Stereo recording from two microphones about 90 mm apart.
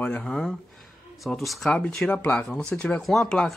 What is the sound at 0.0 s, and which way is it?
Speech, 10° left (ahead or behind).